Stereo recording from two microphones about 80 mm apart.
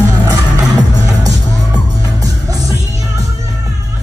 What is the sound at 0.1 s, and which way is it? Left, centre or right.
Music, right.